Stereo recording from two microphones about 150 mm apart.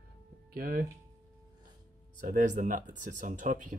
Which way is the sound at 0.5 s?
75° right (ahead or behind).